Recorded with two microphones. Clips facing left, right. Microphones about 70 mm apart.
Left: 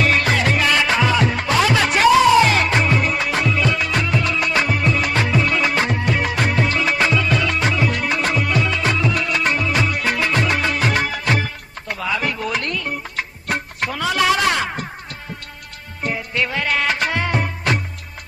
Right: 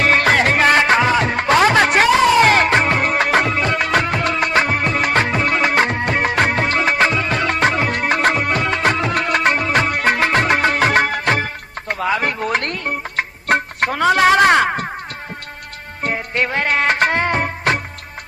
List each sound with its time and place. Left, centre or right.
0.0 s music: right
16.0 s music: right